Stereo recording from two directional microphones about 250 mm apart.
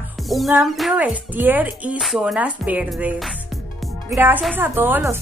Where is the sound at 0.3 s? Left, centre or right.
Centre.